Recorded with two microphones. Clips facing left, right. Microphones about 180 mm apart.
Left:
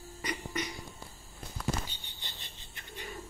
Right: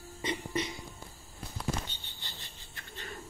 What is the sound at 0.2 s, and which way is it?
Music, 25° right (ahead or behind).